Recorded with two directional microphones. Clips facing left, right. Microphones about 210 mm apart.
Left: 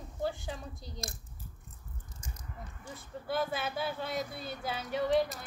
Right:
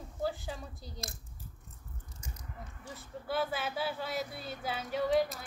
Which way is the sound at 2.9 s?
Centre (ahead or behind).